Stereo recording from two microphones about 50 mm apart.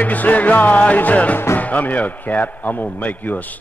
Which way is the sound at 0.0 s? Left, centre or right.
Left.